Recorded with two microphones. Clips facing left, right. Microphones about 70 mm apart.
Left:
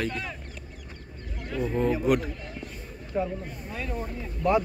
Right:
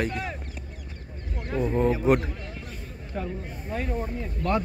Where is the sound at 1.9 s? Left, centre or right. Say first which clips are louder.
Right 2 dB; right.